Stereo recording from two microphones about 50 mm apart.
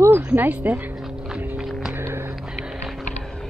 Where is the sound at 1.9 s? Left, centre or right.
Right.